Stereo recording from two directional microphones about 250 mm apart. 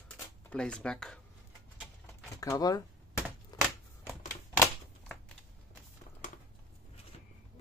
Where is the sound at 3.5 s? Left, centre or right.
Centre.